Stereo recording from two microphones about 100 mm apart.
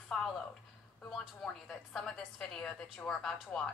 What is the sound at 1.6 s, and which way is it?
A woman's voice, 5° left (ahead or behind).